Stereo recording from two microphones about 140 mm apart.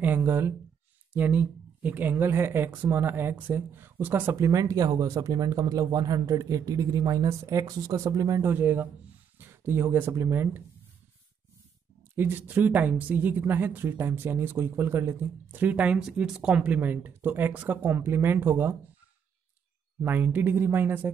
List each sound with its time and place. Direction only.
0.0 s speech: 15° right (ahead or behind)
12.2 s speech: 15° right (ahead or behind)
20.0 s speech: 15° right (ahead or behind)